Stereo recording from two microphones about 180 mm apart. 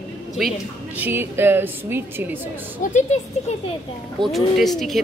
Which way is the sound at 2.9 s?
40° left (ahead or behind).